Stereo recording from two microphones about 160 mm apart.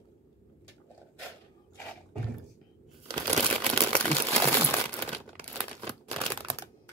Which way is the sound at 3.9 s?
5° left (ahead or behind).